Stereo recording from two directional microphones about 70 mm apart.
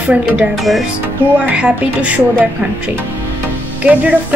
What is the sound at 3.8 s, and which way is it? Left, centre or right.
Speech, centre.